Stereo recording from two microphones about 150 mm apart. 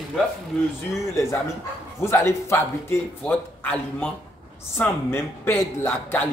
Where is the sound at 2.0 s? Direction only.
20° left (ahead or behind).